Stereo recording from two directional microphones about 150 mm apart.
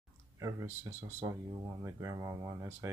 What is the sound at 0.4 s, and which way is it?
Speech, 20° right (ahead or behind).